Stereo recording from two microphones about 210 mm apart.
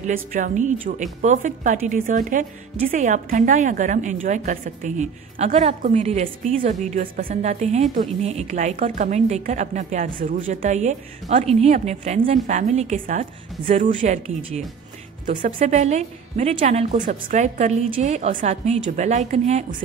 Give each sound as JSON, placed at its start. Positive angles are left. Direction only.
{"t": 0.0, "sound": "a woman's voice", "side_deg": -40}